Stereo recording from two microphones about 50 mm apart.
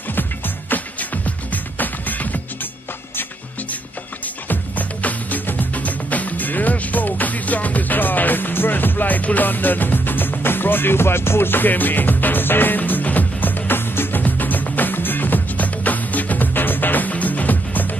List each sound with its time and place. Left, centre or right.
0.1 s music: left
4.5 s music: left